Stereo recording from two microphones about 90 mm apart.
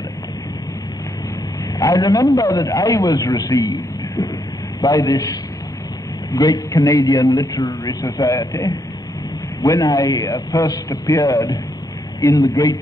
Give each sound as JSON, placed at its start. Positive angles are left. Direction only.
{"t": 1.8, "sound": "a man's voice", "side_deg": 45}
{"t": 3.3, "sound": "a man's voice", "side_deg": 55}
{"t": 3.5, "sound": "a man's voice", "side_deg": 40}
{"t": 9.6, "sound": "a man's voice", "side_deg": 40}